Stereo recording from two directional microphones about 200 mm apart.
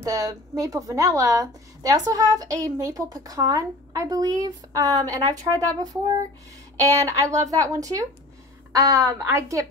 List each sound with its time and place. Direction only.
0.0 s a woman's voice: 15° right (ahead or behind)